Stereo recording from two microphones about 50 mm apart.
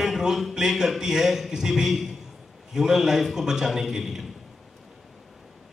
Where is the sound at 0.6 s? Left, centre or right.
Centre.